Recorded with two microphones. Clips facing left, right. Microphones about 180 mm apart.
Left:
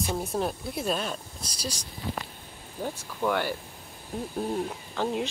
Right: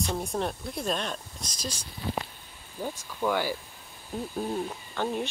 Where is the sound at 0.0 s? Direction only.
5° left (ahead or behind).